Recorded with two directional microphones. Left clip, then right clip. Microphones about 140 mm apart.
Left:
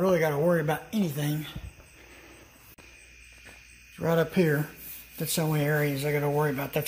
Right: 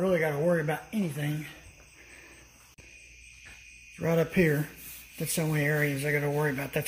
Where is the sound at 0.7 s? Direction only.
15° left (ahead or behind).